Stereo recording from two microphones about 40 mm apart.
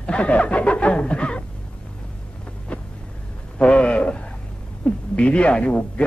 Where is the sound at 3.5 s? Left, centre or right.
Left.